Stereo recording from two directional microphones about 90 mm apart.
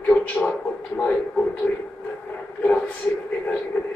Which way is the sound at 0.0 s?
15° left (ahead or behind).